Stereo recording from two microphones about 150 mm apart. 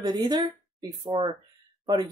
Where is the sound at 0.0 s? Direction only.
30° right (ahead or behind).